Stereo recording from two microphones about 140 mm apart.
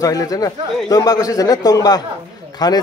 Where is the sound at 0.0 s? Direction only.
25° left (ahead or behind).